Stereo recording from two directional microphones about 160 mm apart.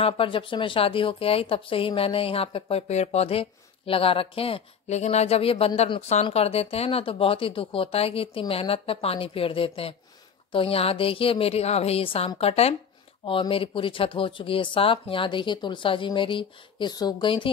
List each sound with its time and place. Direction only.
0.0 s a woman's voice: 35° left (ahead or behind)